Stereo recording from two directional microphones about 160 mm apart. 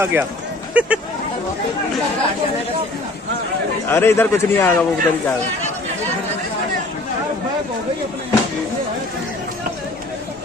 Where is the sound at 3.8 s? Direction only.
15° left (ahead or behind).